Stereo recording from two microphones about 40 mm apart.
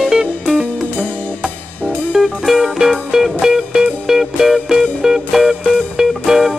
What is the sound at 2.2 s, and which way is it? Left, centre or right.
Music, centre.